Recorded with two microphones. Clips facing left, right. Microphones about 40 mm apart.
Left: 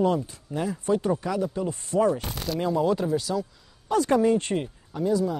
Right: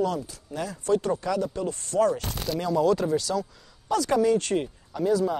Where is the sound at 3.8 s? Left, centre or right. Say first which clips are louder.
Left 1 dB; left.